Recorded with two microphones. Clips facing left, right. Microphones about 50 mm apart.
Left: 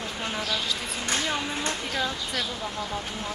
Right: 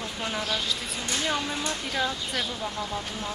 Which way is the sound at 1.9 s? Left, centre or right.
Centre.